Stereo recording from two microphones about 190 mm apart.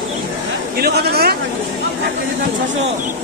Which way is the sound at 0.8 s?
55° right (ahead or behind).